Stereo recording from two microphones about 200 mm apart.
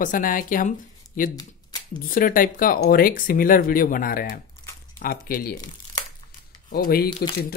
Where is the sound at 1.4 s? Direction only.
20° left (ahead or behind).